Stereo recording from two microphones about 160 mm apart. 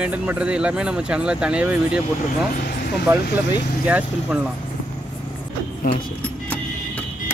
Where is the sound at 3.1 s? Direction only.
15° right (ahead or behind).